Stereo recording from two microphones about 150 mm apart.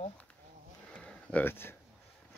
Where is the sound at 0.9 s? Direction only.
5° left (ahead or behind).